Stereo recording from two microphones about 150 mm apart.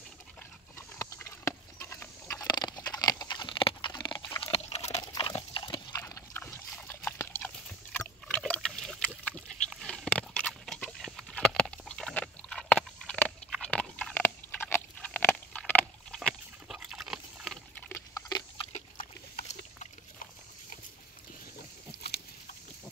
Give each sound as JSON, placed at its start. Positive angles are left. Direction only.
{"t": 0.7, "sound": "a sound", "side_deg": 15}
{"t": 4.4, "sound": "a sound", "side_deg": 45}
{"t": 5.0, "sound": "pig", "side_deg": 25}
{"t": 8.3, "sound": "rowboat", "side_deg": 5}
{"t": 8.5, "sound": "pig", "side_deg": 0}
{"t": 16.2, "sound": "pig", "side_deg": 0}
{"t": 17.7, "sound": "dog", "side_deg": 15}
{"t": 18.7, "sound": "pig", "side_deg": 60}
{"t": 21.9, "sound": "a sound", "side_deg": 90}